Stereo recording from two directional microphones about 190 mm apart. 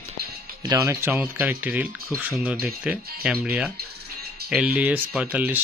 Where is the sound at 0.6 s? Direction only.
15° right (ahead or behind).